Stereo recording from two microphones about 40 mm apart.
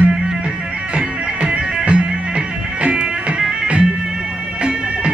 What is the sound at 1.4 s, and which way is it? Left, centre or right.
Music, right.